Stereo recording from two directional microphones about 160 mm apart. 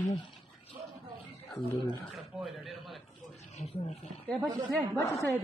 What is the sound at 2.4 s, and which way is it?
Speech, centre (ahead or behind).